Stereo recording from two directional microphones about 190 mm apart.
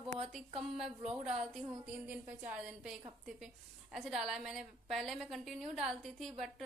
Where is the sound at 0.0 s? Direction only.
30° right (ahead or behind).